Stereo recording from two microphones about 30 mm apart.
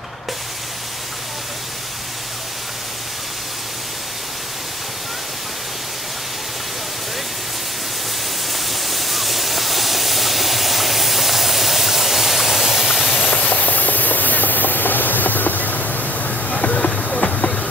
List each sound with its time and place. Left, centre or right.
8.5 s steam: centre
13.2 s vehicle: left
17.2 s vehicle: left